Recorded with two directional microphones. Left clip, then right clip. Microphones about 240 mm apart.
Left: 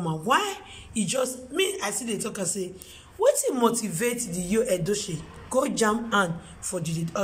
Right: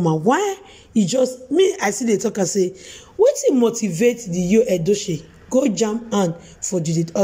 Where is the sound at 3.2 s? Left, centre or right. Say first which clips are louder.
Right 6 dB; centre.